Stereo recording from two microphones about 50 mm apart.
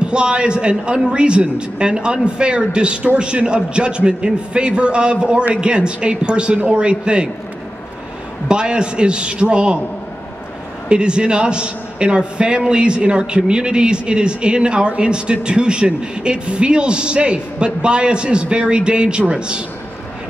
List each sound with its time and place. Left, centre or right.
0.0 s a man's voice: centre
8.5 s a man's voice: centre
10.9 s a man's voice: centre